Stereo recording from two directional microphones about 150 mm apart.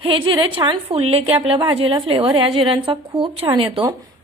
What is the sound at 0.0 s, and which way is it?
A woman's voice, 35° right (ahead or behind).